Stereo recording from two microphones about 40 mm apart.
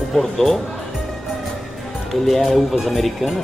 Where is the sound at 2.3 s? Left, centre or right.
Centre.